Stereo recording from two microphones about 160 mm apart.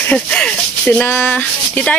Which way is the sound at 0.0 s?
5° left (ahead or behind).